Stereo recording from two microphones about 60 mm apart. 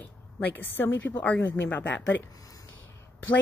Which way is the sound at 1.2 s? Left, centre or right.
Left.